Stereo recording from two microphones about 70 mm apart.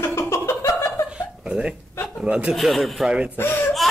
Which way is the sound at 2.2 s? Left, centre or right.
Centre.